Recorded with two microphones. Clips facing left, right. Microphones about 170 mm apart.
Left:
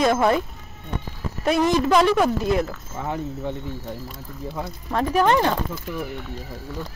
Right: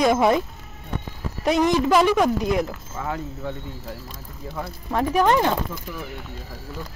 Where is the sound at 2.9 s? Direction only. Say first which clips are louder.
Left 2 dB; 20° left (ahead or behind).